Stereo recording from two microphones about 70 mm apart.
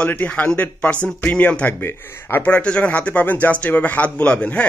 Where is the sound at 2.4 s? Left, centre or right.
Centre.